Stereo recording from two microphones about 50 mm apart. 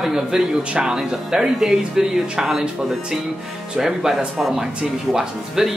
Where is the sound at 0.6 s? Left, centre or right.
Centre.